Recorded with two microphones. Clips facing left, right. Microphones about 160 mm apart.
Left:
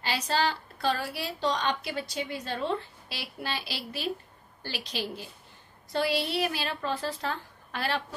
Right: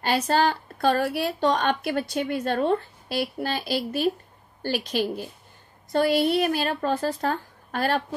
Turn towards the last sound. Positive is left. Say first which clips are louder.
# right 7 dB
turn(degrees=-45)  # may be behind; listen again after turning